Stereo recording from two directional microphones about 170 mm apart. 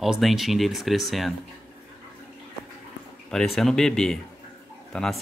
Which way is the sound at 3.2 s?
Centre (ahead or behind).